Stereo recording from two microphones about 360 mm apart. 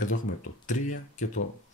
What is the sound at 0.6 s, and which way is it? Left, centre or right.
Speech, left.